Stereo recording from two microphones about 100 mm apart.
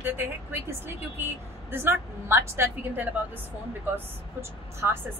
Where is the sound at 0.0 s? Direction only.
20° right (ahead or behind).